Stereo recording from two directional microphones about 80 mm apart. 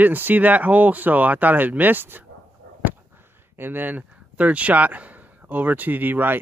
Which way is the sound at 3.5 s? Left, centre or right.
Right.